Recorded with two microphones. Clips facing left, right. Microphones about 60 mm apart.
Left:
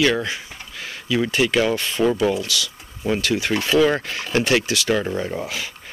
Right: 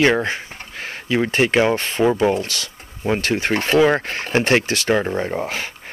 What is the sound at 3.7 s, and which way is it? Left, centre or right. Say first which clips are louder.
Speech: right 2 dB; right.